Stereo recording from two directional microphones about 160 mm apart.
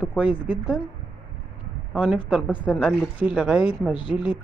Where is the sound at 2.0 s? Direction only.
10° right (ahead or behind).